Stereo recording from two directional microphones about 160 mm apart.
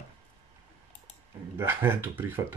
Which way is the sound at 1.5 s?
15° right (ahead or behind).